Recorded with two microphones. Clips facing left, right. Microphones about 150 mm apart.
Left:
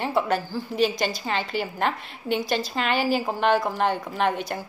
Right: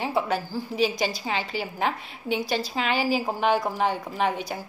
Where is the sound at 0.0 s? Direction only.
5° right (ahead or behind).